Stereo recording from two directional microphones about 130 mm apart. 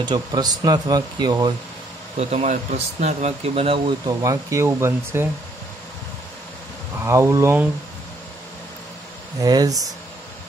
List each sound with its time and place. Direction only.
0.0 s speech: 35° right (ahead or behind)
2.1 s speech: 60° right (ahead or behind)
4.0 s speech: 25° right (ahead or behind)
7.1 s speech: 20° right (ahead or behind)
9.4 s speech: 30° right (ahead or behind)